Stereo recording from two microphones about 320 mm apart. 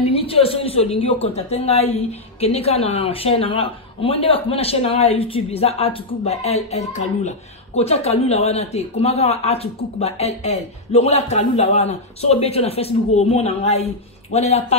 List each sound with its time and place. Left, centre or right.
0.0 s speech: centre